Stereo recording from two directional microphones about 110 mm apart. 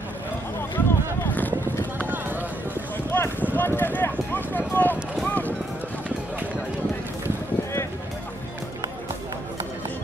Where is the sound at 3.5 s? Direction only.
20° left (ahead or behind).